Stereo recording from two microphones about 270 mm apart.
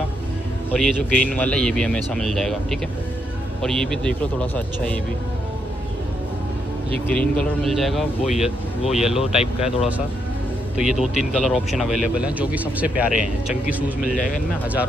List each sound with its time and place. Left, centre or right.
0.7 s speech: centre
7.1 s speech: centre
14.1 s speech: left